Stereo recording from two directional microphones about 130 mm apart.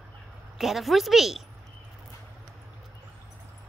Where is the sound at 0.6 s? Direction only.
Centre (ahead or behind).